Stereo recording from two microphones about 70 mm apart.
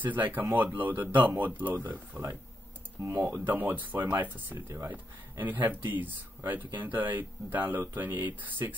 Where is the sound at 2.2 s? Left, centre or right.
Right.